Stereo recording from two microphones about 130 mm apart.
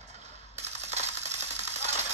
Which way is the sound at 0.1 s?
60° right (ahead or behind).